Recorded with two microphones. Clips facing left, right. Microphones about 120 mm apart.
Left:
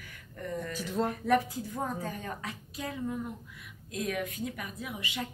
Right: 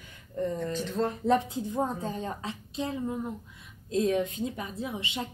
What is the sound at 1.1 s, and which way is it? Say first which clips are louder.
A woman's voice: right 1 dB; 25° right (ahead or behind).